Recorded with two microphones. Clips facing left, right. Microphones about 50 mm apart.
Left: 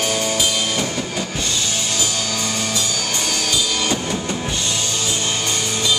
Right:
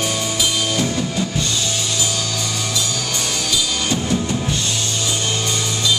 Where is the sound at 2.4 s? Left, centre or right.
Left.